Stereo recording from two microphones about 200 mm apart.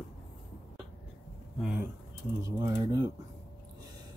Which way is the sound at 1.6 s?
5° right (ahead or behind).